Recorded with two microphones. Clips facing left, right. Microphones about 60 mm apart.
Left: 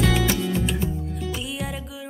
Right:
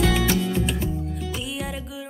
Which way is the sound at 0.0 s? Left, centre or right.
Centre.